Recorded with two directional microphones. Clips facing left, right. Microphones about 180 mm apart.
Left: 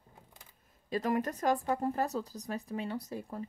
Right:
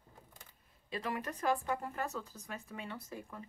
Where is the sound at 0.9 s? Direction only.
40° left (ahead or behind).